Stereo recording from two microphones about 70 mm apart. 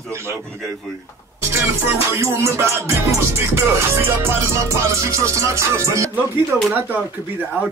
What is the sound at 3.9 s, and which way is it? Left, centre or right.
Music, right.